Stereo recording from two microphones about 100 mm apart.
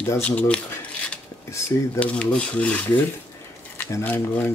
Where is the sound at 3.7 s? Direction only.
25° left (ahead or behind).